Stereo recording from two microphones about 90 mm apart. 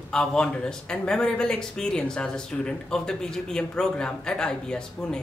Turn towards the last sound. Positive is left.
turn(degrees=10)  # may be behind; listen again after turning